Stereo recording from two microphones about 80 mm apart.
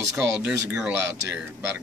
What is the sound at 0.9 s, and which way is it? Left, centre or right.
Speech, right.